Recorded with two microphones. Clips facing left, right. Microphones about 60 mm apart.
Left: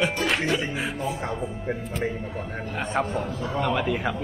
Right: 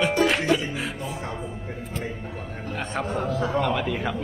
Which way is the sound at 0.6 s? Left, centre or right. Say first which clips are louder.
Left 2 dB; left.